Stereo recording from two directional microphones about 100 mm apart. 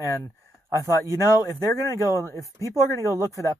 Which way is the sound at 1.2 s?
35° left (ahead or behind).